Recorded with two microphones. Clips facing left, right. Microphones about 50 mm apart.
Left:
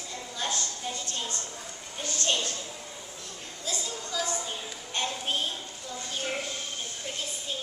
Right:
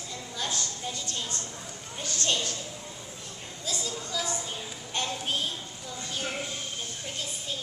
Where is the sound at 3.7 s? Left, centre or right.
Left.